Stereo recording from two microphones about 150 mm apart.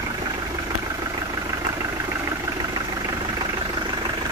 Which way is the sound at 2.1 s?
20° right (ahead or behind).